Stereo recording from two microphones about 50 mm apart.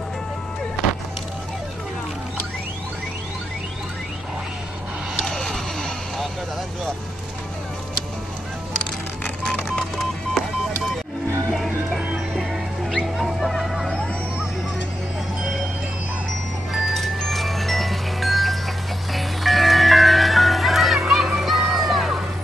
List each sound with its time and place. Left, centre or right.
5.2 s vehicle: centre
9.8 s telephone dialing: centre
11.5 s music: centre
16.7 s music: centre
21.0 s children playing: centre
21.6 s music: centre